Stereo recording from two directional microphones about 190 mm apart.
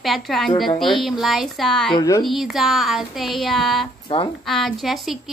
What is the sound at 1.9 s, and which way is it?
Speech, 20° left (ahead or behind).